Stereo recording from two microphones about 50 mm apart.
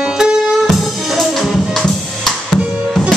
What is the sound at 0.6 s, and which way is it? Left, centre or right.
Music, centre.